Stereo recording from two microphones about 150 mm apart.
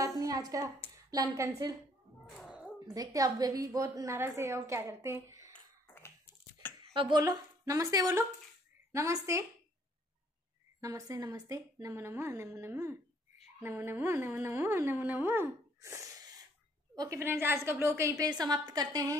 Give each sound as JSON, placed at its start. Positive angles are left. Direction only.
{"t": 0.2, "sound": "a woman's voice", "side_deg": -25}
{"t": 2.2, "sound": "music", "side_deg": -5}
{"t": 2.9, "sound": "a woman's voice", "side_deg": -25}
{"t": 5.9, "sound": "dog", "side_deg": 15}
{"t": 6.9, "sound": "a woman's voice", "side_deg": -35}
{"t": 10.8, "sound": "a woman's voice", "side_deg": -20}